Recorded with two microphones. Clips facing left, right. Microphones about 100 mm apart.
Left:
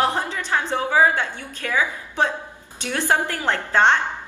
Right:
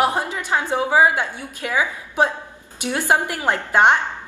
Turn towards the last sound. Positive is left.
turn(degrees=-15)  # may be behind; listen again after turning